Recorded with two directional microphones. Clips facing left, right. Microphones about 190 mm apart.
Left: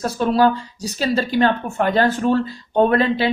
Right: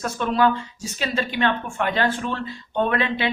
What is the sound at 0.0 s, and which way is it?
A man's voice, 35° left (ahead or behind).